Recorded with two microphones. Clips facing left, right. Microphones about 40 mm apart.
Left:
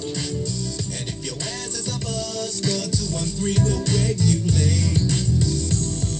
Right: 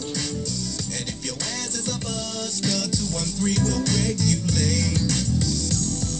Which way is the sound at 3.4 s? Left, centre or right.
Left.